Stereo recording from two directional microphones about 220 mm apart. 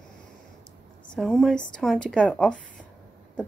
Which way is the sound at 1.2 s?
Centre (ahead or behind).